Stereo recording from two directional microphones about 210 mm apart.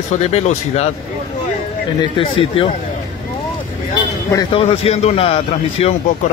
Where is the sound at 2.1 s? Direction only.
25° left (ahead or behind).